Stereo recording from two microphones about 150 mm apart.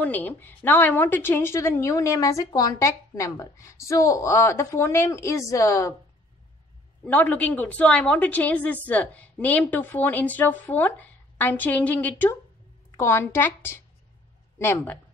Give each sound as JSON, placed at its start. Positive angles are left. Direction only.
{"t": 0.0, "sound": "a woman's voice", "side_deg": 10}
{"t": 7.1, "sound": "a woman's voice", "side_deg": 10}